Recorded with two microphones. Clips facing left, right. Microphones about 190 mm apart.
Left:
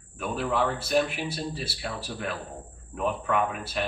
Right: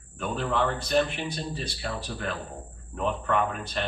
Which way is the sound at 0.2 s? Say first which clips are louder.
Even; 5° left (ahead or behind).